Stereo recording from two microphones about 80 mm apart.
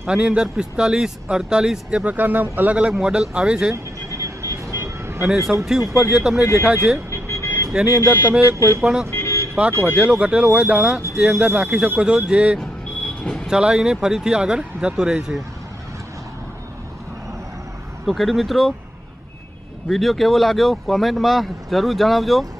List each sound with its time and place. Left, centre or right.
0.1 s speech: centre
2.7 s speech: centre
4.4 s vehicle: right
5.7 s speech: centre
7.1 s vehicle: left
7.8 s speech: right
9.1 s vehicle: left
9.9 s speech: centre
13.2 s speech: centre
13.5 s speech: centre
18.0 s speech: centre
19.9 s speech: centre